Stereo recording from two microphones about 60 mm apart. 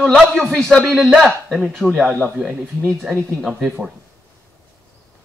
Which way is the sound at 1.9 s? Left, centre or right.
Centre.